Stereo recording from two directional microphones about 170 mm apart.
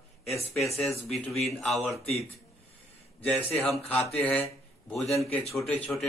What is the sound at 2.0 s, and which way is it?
Speech, 35° left (ahead or behind).